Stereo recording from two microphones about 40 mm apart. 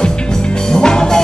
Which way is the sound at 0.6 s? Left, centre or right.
Centre.